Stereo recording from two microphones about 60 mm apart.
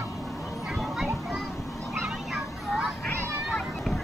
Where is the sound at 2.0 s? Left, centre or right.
Centre.